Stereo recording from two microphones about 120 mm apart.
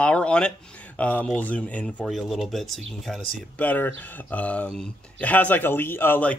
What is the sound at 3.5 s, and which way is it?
Speech, 15° left (ahead or behind).